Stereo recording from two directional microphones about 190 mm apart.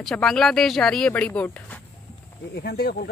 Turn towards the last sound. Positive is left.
turn(degrees=55)  # may be behind; listen again after turning